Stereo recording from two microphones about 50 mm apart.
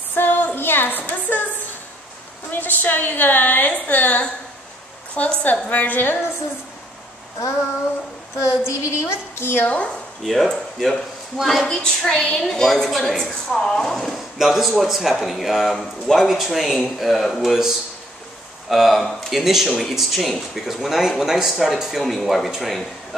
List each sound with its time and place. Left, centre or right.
0.1 s a sound: left
0.6 s a woman's voice: left
2.5 s a woman's voice: left
8.4 s a woman's voice: left
10.2 s speech: centre
11.6 s a woman's voice: centre
12.4 s speech: centre